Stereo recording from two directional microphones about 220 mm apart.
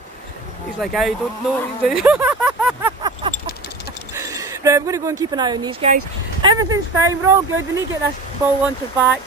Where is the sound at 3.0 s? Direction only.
20° right (ahead or behind).